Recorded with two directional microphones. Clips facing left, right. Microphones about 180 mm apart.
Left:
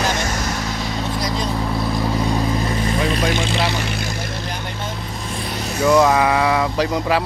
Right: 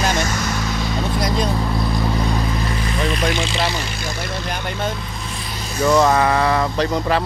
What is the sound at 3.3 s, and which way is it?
Speech, 50° left (ahead or behind).